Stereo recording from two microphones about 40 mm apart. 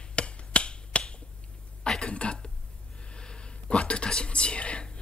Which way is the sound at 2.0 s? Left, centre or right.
Left.